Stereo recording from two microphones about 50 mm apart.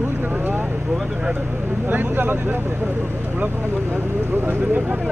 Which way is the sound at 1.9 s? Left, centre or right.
Right.